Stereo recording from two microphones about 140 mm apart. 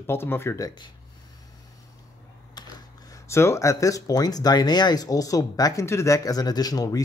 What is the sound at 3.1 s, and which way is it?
Speech, 20° left (ahead or behind).